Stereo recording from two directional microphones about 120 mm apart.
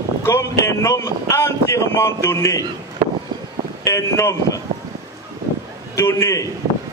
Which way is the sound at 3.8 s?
25° left (ahead or behind).